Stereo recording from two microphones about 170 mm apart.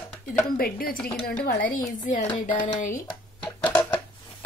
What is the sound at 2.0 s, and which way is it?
Speech, 45° left (ahead or behind).